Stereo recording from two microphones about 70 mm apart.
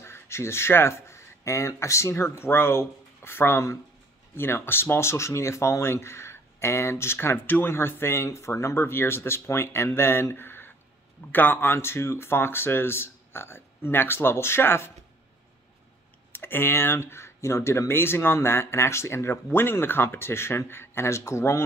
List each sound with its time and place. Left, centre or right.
0.0 s speech: left
16.3 s speech: left